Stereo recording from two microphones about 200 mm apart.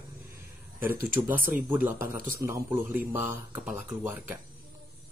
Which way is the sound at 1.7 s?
10° right (ahead or behind).